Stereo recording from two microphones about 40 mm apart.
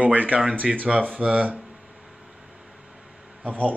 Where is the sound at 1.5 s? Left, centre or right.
Centre.